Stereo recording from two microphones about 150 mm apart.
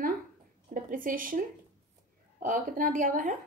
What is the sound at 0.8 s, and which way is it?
Speech, 65° right (ahead or behind).